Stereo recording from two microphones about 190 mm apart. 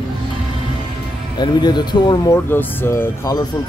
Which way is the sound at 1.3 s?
20° left (ahead or behind).